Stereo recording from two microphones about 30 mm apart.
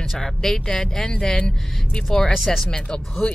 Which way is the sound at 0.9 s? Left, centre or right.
Centre.